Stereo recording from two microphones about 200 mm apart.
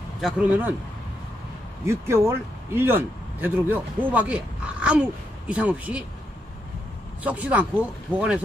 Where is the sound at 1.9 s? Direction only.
15° right (ahead or behind).